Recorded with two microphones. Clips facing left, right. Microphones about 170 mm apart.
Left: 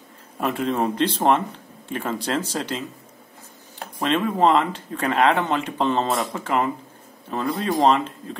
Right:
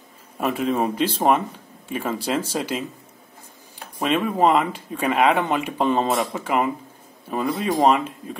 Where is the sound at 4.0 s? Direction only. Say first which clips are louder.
Even; 10° right (ahead or behind).